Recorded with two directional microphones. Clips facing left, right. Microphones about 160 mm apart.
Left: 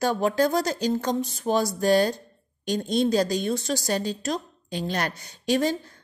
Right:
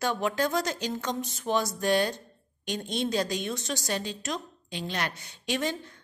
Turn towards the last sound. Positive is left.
turn(degrees=40)  # may be behind; listen again after turning